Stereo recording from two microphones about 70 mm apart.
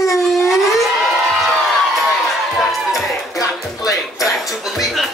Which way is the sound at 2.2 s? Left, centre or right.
Centre.